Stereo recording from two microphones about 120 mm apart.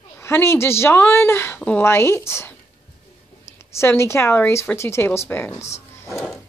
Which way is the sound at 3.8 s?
20° left (ahead or behind).